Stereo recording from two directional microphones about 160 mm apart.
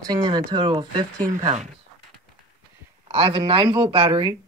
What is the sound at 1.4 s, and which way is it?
Speech, 45° right (ahead or behind).